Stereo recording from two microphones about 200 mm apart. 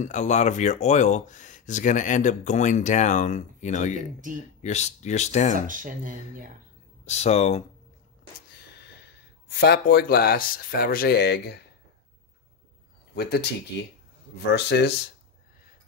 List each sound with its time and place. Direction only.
0.0 s speech: 35° left (ahead or behind)
4.2 s speech: 40° right (ahead or behind)
4.6 s speech: 35° left (ahead or behind)
5.7 s speech: 40° right (ahead or behind)
7.1 s speech: 35° left (ahead or behind)
8.5 s speech: 55° left (ahead or behind)
13.1 s speech: 55° left (ahead or behind)